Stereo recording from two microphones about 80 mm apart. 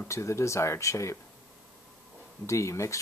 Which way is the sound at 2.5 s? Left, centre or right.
Left.